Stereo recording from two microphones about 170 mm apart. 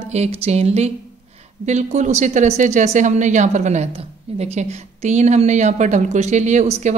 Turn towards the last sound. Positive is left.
turn(degrees=-40)  # may be behind; listen again after turning